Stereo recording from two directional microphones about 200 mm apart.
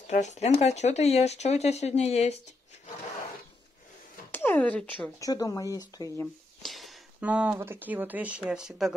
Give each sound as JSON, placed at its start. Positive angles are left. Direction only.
{"t": 0.0, "sound": "speech", "side_deg": 35}
{"t": 4.3, "sound": "speech", "side_deg": 10}
{"t": 5.2, "sound": "speech", "side_deg": 15}
{"t": 6.6, "sound": "speech", "side_deg": 0}